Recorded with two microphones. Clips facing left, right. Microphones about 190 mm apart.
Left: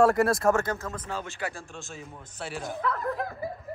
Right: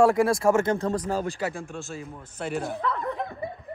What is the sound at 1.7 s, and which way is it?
Speech, 5° right (ahead or behind).